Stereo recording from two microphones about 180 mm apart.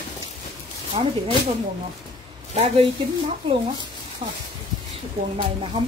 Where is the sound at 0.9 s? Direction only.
30° right (ahead or behind).